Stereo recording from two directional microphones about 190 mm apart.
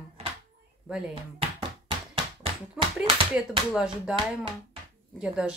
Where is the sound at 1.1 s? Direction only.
30° right (ahead or behind).